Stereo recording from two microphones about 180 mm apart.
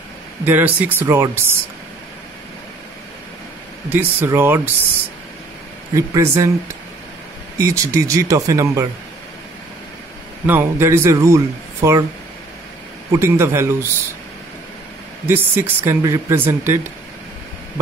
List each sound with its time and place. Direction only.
0.5 s speech: 10° right (ahead or behind)
3.9 s speech: 10° right (ahead or behind)
5.9 s speech: 15° right (ahead or behind)
7.5 s speech: 15° right (ahead or behind)
10.4 s speech: 10° right (ahead or behind)
13.1 s speech: 15° right (ahead or behind)
15.2 s speech: 10° right (ahead or behind)